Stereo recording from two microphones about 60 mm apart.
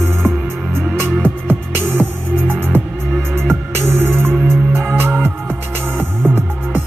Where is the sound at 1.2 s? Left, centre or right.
Right.